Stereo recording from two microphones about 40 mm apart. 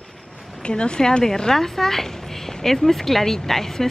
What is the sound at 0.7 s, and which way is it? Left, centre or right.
Speech, centre.